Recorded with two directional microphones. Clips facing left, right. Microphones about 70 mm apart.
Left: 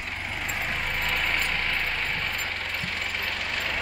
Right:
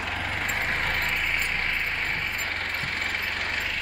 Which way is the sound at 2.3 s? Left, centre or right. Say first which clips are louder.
Right 1 dB; right.